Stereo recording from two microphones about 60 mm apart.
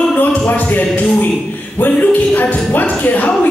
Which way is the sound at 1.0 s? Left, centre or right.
Left.